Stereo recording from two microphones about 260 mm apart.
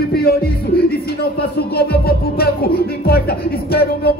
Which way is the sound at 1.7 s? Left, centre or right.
Left.